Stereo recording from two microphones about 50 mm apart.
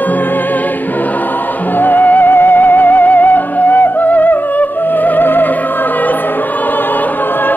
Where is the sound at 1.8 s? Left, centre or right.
Left.